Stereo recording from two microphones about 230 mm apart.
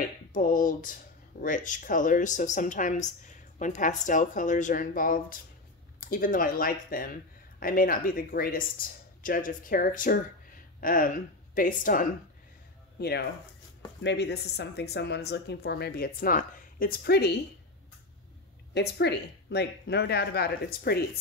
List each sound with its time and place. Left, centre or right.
0.3 s speech: left
14.0 s speech: left
18.7 s speech: left